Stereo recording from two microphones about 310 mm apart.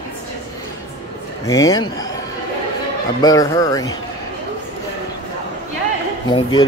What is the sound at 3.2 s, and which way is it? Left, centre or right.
Speech, centre.